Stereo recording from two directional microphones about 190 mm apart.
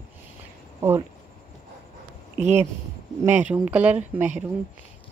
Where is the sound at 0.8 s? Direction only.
15° right (ahead or behind).